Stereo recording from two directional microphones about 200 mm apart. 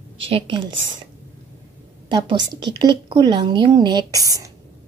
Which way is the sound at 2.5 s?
20° right (ahead or behind).